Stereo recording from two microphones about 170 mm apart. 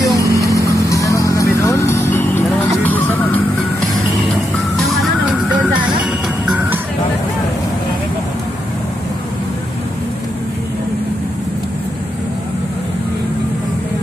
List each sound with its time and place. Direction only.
0.2 s vehicle: 20° right (ahead or behind)
0.7 s vehicle: 20° left (ahead or behind)